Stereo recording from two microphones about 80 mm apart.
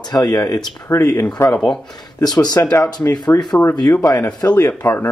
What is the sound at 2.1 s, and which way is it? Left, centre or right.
Speech, left.